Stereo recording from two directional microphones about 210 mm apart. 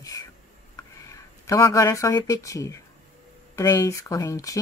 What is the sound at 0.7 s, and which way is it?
Speech, 15° left (ahead or behind).